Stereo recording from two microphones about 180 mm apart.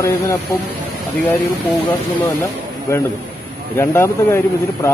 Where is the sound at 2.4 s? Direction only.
15° left (ahead or behind).